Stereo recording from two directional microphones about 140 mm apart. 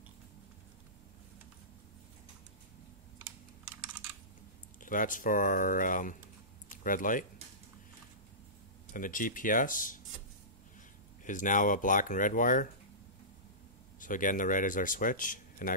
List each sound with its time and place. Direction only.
4.7 s speech: 70° left (ahead or behind)
8.9 s speech: 75° left (ahead or behind)
11.2 s speech: 65° left (ahead or behind)
13.9 s speech: 70° left (ahead or behind)